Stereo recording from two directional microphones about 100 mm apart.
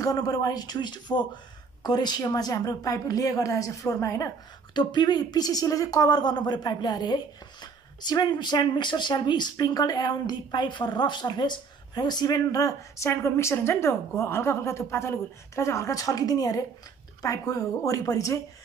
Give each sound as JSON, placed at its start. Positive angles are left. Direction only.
{"t": 0.0, "sound": "speech", "side_deg": 40}
{"t": 4.7, "sound": "speech", "side_deg": 45}